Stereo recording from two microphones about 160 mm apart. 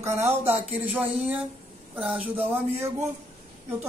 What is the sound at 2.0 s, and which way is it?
Speech, 10° right (ahead or behind).